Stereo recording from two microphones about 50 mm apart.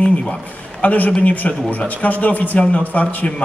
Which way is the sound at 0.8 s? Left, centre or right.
Left.